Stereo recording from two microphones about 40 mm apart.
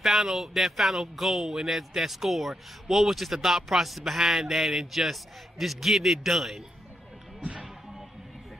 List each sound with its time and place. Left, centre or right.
0.0 s speech: centre